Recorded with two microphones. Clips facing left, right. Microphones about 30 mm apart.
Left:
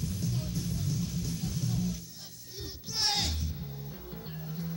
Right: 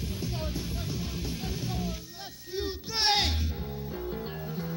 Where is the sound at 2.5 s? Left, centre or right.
Right.